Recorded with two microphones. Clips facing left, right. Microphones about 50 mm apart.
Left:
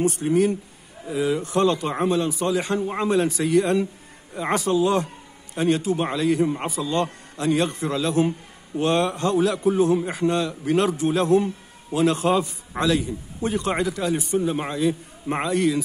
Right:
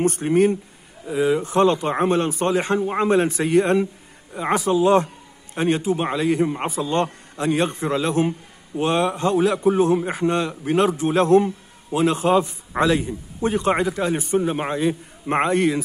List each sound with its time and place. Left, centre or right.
0.0 s speech: right
1.1 s speech: right
4.4 s speech: centre
5.5 s a man's voice: right
8.3 s a man's voice: centre
15.2 s speech: right